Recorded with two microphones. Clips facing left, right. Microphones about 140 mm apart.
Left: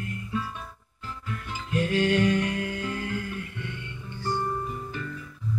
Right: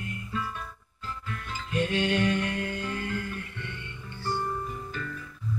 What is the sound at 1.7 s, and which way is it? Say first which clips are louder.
Music: left 3 dB; 5° left (ahead or behind).